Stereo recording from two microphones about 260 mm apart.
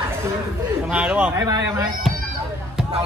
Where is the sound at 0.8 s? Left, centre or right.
Centre.